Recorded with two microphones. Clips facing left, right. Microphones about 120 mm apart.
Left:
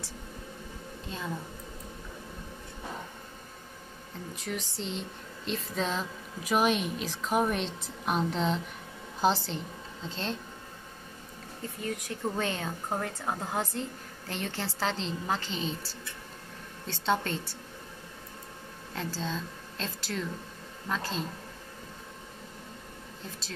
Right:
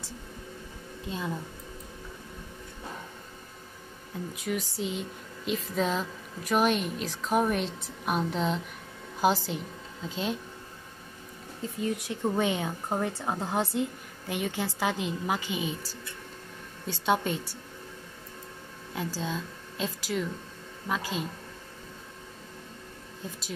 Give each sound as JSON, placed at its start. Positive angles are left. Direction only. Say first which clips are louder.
{"t": 1.0, "sound": "a woman's voice", "louder": "right 4 dB", "side_deg": -20}
{"t": 4.4, "sound": "a woman's voice", "louder": "right 5 dB", "side_deg": -5}
{"t": 11.6, "sound": "a woman's voice", "louder": "right 5 dB", "side_deg": -20}
{"t": 16.8, "sound": "a woman's voice", "louder": "right 2 dB", "side_deg": -10}
{"t": 18.9, "sound": "a woman's voice", "louder": "right 2 dB", "side_deg": -10}